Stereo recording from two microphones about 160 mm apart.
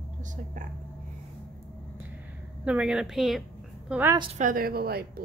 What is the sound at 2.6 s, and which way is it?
Speech, 5° right (ahead or behind).